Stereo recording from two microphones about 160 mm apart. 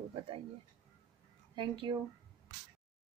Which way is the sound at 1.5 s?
30° right (ahead or behind).